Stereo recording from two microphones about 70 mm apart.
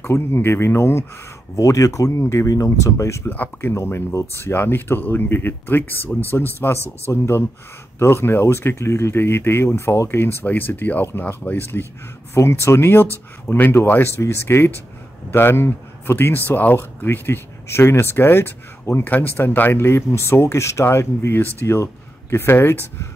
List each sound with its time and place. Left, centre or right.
0.0 s speech: left
1.6 s speech: left
3.3 s speech: left
22.3 s speech: left